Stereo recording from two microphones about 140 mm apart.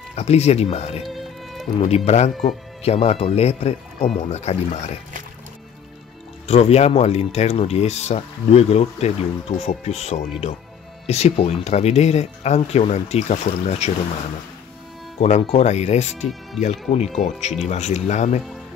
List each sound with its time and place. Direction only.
0.1 s speech: 50° left (ahead or behind)
1.0 s music: centre (ahead or behind)
1.9 s speech: 50° left (ahead or behind)
6.4 s speech: 50° left (ahead or behind)
15.1 s speech: 50° left (ahead or behind)